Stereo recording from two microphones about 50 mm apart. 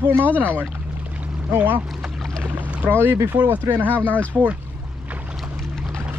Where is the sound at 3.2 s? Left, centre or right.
Right.